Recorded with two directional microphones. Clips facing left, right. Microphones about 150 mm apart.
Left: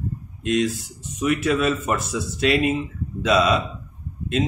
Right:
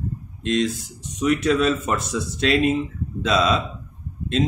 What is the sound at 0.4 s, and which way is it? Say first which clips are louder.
Speech: even; 5° left (ahead or behind).